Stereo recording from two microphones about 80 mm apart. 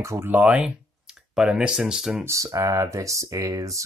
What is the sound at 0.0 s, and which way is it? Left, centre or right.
Speech, right.